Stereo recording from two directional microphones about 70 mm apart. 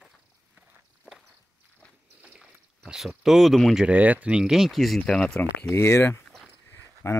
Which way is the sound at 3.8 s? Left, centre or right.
Right.